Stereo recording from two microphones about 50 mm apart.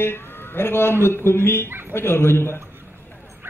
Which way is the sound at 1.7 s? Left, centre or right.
Right.